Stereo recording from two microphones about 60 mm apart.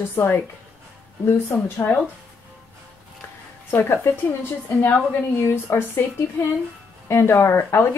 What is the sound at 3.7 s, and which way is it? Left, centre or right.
Speech, left.